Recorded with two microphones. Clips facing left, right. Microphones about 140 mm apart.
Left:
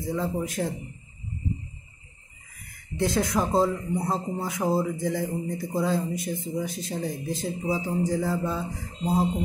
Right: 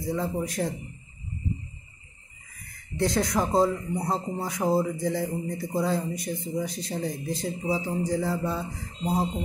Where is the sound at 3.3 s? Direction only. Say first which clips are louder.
Even; 20° right (ahead or behind).